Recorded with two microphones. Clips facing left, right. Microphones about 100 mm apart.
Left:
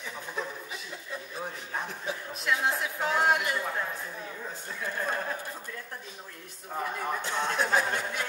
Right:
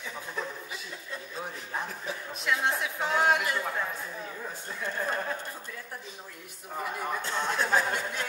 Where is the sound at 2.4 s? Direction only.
Centre (ahead or behind).